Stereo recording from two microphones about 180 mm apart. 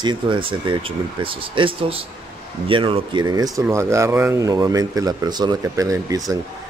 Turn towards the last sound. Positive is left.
turn(degrees=-20)  # may be behind; listen again after turning